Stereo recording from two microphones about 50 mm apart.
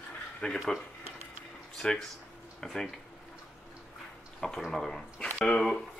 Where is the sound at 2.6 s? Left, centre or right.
Centre.